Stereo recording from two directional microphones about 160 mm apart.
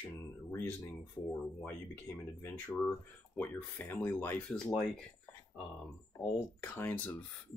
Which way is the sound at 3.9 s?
15° left (ahead or behind).